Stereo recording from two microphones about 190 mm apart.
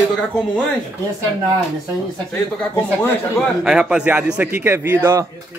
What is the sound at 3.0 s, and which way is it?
A man's voice, centre (ahead or behind).